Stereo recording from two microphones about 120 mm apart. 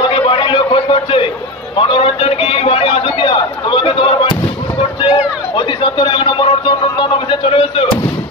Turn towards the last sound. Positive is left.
turn(degrees=45)  # may be behind; listen again after turning